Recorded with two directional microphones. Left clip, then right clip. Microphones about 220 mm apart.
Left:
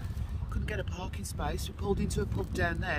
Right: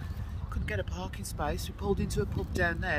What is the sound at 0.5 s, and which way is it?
Speech, 5° right (ahead or behind).